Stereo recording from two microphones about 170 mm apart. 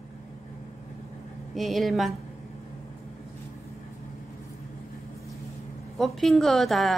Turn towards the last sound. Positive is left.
turn(degrees=0)  # may be behind; listen again after turning